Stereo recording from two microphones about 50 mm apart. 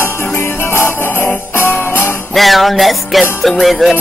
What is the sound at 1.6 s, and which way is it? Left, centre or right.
Music, left.